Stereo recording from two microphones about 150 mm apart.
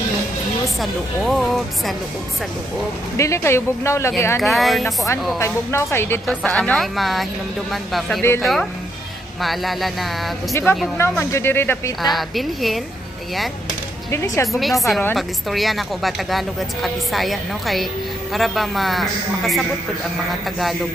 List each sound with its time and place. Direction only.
0.7 s a woman's voice: centre (ahead or behind)
3.2 s speech: 20° left (ahead or behind)
4.4 s a woman's voice: centre (ahead or behind)
4.8 s speech: 20° left (ahead or behind)
6.2 s a woman's voice: 5° left (ahead or behind)
10.5 s speech: 15° left (ahead or behind)
12.0 s a woman's voice: centre (ahead or behind)
14.1 s speech: 20° left (ahead or behind)
14.6 s a woman's voice: centre (ahead or behind)